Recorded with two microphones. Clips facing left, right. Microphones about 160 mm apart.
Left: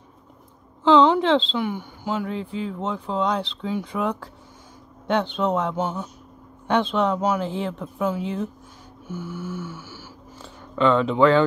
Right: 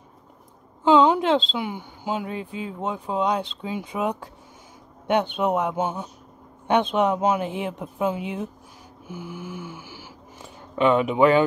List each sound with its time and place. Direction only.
0.8 s speech: 10° right (ahead or behind)